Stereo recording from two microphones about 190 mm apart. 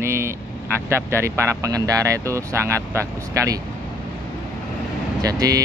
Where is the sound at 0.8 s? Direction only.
15° right (ahead or behind).